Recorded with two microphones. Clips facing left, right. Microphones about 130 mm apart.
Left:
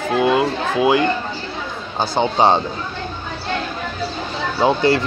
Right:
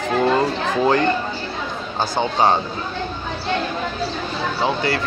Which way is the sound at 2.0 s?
20° left (ahead or behind).